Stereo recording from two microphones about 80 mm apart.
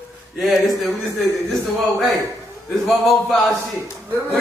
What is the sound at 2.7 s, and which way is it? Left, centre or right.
Speech, centre.